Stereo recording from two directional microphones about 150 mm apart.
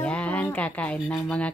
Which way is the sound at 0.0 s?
10° left (ahead or behind).